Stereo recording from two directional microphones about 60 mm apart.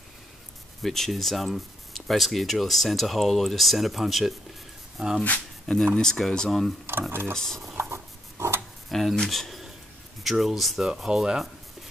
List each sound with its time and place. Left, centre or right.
0.8 s speech: centre
5.9 s speech: centre
6.9 s speech: right
7.3 s speech: centre
7.9 s a sound: right
8.8 s a sound: centre
9.1 s speech: centre